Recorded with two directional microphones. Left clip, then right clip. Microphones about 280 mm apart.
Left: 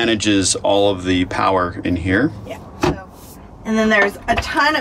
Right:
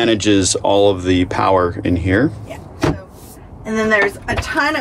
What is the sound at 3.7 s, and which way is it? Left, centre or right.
Speech, left.